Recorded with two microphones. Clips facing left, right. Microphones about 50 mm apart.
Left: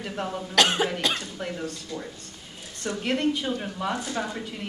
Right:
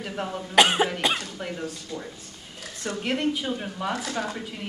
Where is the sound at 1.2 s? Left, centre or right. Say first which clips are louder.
Even; centre.